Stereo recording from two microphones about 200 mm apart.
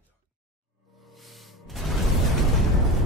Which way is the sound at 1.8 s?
Centre (ahead or behind).